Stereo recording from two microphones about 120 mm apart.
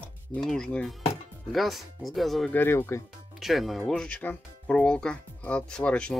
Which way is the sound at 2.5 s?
15° left (ahead or behind).